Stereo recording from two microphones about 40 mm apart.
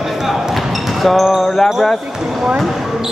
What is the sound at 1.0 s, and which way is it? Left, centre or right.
Speech, centre.